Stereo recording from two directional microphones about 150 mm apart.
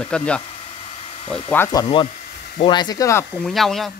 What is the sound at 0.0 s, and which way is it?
Speech, 5° left (ahead or behind).